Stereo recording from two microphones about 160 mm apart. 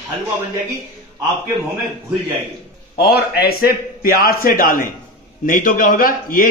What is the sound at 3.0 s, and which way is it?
A man's voice, 75° left (ahead or behind).